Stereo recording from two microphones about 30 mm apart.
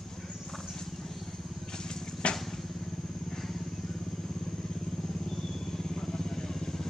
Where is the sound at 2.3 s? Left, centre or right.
Centre.